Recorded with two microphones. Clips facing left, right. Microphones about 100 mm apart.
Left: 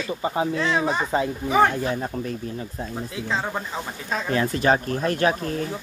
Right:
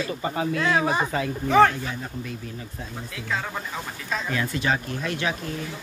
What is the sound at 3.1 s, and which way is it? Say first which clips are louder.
Speech: left 2 dB; 25° left (ahead or behind).